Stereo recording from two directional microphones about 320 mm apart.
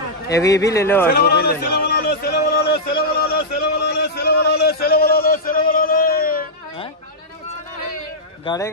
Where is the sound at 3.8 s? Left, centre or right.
Left.